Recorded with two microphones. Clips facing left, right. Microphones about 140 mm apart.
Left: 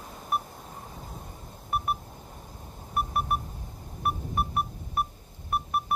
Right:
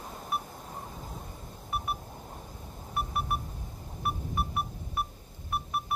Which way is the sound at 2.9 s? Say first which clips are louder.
Left 4 dB; 50° left (ahead or behind).